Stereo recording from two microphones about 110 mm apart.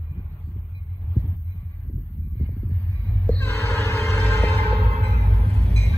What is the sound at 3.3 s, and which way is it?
Music, 20° left (ahead or behind).